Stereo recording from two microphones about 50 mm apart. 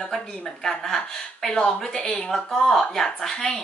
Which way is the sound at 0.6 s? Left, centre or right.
Centre.